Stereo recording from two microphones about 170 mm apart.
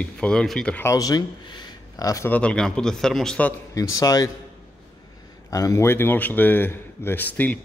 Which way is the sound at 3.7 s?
20° left (ahead or behind).